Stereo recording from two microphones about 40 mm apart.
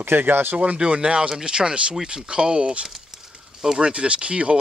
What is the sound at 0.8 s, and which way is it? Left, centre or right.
Speech, right.